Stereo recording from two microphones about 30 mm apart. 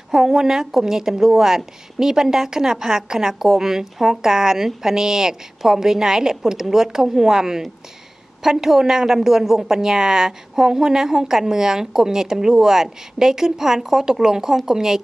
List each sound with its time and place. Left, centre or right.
0.1 s a woman's voice: centre